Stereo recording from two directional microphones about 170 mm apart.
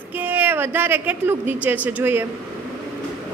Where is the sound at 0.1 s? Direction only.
10° right (ahead or behind).